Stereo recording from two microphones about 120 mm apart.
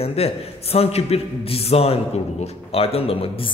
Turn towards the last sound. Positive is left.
turn(degrees=50)  # may be behind; listen again after turning